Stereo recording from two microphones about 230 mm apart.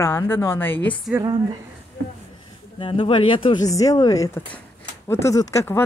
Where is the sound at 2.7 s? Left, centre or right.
Left.